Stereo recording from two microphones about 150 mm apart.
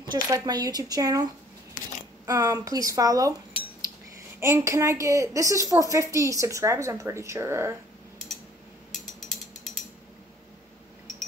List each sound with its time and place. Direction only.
0.0 s a woman's voice: 25° right (ahead or behind)
4.4 s a woman's voice: 15° right (ahead or behind)
8.9 s mechanisms: centre (ahead or behind)